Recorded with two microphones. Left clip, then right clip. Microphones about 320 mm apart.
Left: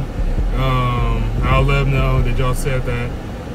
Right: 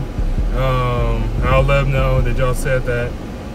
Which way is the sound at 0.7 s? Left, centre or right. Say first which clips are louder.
Even; centre.